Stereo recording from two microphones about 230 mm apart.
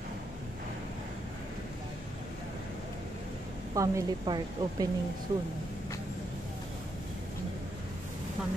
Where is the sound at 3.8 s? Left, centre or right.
Centre.